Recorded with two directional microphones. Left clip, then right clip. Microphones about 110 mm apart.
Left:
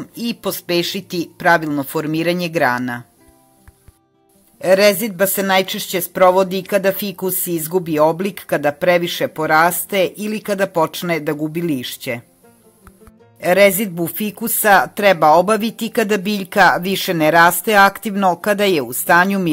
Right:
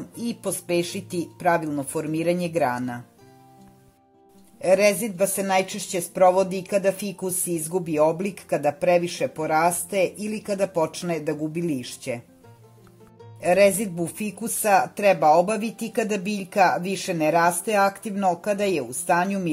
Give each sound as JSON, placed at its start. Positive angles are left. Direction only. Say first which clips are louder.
{"t": 0.2, "sound": "speech", "louder": "left 6 dB", "side_deg": 20}
{"t": 4.6, "sound": "a woman's voice", "louder": "left 6 dB", "side_deg": 30}
{"t": 8.3, "sound": "speech", "louder": "left 6 dB", "side_deg": 20}
{"t": 10.7, "sound": "a woman's voice", "louder": "left 7 dB", "side_deg": 35}
{"t": 13.4, "sound": "speech", "louder": "left 6 dB", "side_deg": 20}
{"t": 13.9, "sound": "a woman's voice", "louder": "left 7 dB", "side_deg": 30}